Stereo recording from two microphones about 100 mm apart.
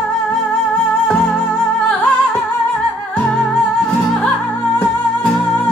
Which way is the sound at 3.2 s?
10° left (ahead or behind).